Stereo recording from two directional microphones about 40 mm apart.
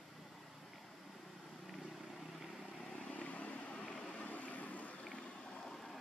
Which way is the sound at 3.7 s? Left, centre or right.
Left.